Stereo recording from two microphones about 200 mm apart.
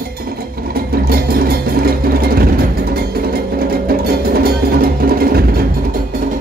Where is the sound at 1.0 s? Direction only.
50° right (ahead or behind).